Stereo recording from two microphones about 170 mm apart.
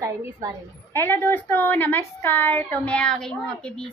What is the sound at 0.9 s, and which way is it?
A woman's voice, 15° left (ahead or behind).